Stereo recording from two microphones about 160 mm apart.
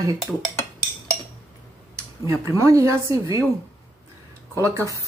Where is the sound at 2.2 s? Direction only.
15° right (ahead or behind).